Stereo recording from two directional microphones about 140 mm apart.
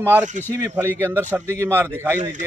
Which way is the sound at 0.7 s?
20° right (ahead or behind).